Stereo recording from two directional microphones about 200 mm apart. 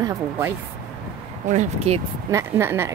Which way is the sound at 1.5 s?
30° right (ahead or behind).